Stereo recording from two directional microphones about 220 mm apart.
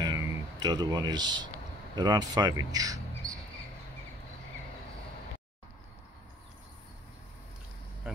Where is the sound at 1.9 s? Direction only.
20° right (ahead or behind).